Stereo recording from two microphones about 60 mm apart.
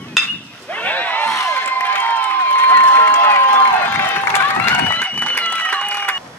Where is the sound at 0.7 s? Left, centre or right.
Left.